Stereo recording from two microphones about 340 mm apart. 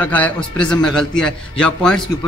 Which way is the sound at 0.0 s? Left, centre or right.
Centre.